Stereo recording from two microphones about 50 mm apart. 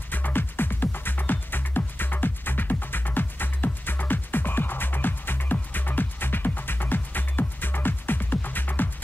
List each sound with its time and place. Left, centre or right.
0.1 s music: left